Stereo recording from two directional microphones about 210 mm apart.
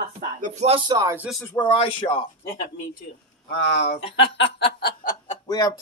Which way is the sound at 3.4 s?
55° left (ahead or behind).